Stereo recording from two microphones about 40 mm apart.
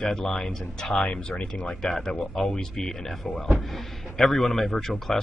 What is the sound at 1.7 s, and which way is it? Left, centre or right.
Speech, centre.